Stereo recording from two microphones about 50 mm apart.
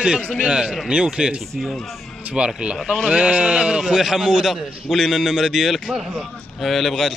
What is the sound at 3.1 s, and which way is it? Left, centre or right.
A man's voice, centre.